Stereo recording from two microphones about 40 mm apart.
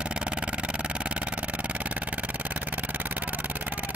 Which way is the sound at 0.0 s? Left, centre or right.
Right.